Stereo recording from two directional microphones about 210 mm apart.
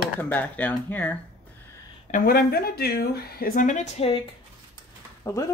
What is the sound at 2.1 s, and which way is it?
Speech, 45° left (ahead or behind).